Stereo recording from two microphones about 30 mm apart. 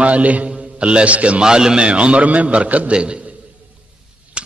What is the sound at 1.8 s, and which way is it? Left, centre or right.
A man's voice, right.